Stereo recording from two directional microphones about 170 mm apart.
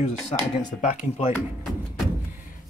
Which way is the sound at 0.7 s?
45° left (ahead or behind).